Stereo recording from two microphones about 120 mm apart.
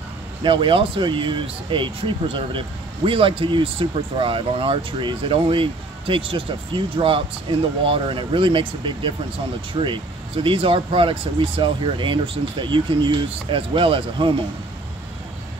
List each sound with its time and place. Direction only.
0.4 s speech: 45° right (ahead or behind)